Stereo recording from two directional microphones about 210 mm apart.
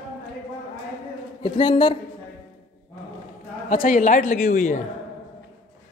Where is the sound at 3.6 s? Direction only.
40° left (ahead or behind).